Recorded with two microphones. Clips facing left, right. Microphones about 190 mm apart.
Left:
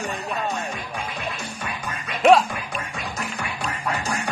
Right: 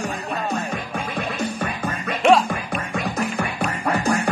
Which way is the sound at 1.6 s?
55° right (ahead or behind).